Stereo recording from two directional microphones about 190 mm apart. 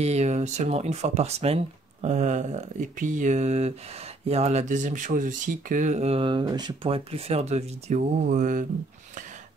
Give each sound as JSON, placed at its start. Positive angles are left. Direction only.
{"t": 0.0, "sound": "speech", "side_deg": -35}